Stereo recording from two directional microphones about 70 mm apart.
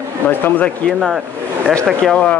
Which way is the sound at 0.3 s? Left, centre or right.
Left.